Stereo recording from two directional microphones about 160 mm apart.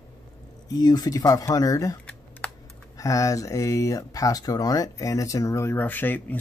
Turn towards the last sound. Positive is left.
turn(degrees=10)  # may be behind; listen again after turning